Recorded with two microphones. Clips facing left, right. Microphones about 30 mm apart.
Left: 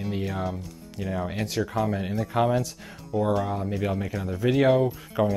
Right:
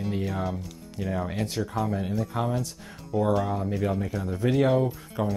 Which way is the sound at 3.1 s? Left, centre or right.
Centre.